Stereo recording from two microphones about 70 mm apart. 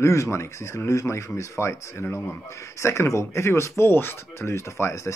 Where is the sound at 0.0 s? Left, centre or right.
Left.